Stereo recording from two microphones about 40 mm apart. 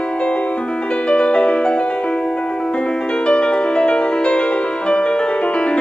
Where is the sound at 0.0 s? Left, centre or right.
Left.